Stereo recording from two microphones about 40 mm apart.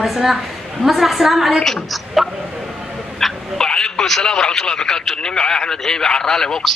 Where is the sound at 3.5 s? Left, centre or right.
Centre.